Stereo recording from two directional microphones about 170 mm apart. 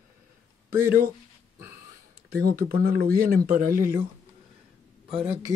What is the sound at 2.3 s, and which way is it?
Speech, 60° right (ahead or behind).